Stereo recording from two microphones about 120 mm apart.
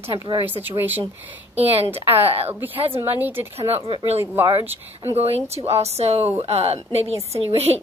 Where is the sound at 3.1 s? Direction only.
15° right (ahead or behind).